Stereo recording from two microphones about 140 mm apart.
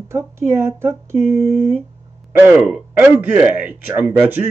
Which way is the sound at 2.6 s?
5° right (ahead or behind).